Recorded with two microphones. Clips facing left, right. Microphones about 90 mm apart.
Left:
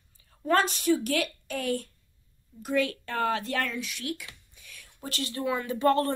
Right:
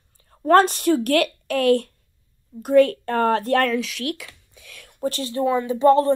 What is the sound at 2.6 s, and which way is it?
Speech, 50° right (ahead or behind).